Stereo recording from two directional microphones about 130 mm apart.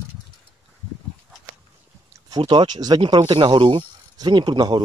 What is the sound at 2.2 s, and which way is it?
Speech, 35° right (ahead or behind).